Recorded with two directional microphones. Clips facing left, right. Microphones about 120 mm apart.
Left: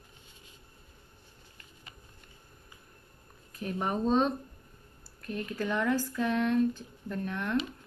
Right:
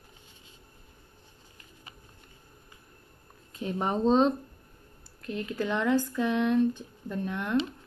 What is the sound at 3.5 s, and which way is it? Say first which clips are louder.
Speech: right 3 dB; 25° right (ahead or behind).